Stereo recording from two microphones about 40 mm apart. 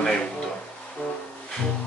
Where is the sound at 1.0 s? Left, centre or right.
Left.